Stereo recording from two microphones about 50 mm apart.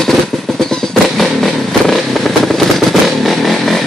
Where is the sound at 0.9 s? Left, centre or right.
Centre.